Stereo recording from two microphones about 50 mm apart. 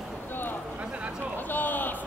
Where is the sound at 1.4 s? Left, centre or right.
Left.